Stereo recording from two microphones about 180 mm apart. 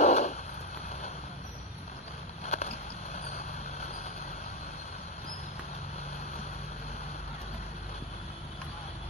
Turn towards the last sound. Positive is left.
turn(degrees=35)  # may be behind; listen again after turning